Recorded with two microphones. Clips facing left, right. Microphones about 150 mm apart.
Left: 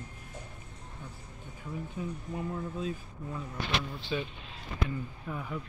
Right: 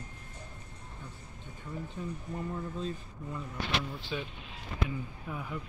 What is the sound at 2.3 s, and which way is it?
Speech, 5° left (ahead or behind).